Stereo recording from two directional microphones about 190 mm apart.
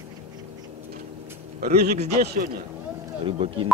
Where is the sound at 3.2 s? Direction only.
30° right (ahead or behind).